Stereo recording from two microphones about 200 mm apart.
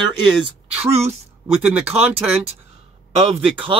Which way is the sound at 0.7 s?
30° right (ahead or behind).